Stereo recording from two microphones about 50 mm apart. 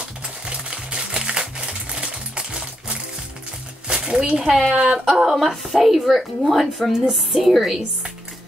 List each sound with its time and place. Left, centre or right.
0.0 s music: right
4.5 s a woman's voice: centre
4.7 s speech: centre
5.0 s a woman's voice: centre